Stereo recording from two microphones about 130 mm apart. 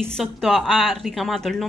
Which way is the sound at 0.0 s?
Centre (ahead or behind).